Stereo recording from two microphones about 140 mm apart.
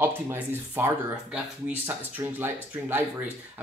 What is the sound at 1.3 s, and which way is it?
Speech, 15° right (ahead or behind).